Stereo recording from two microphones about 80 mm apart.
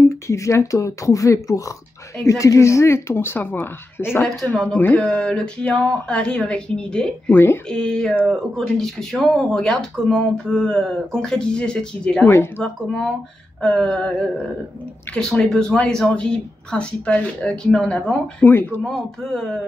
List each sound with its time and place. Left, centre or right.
0.0 s speech: left; by 7.3 s centre
7.3 s speech: left
7.6 s speech: centre
12.3 s speech: left
12.6 s speech: centre
15.1 s speech: centre